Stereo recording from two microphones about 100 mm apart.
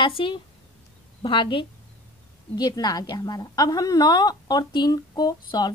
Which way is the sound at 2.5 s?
45° left (ahead or behind).